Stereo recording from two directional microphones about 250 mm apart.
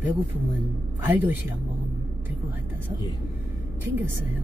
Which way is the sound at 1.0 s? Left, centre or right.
Centre.